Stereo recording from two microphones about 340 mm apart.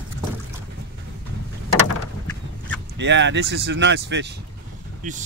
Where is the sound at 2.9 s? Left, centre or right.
Right.